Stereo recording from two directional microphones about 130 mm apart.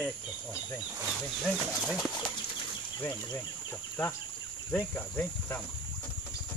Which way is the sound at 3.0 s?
15° left (ahead or behind).